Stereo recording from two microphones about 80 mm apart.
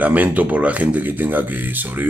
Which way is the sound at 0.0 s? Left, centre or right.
Right.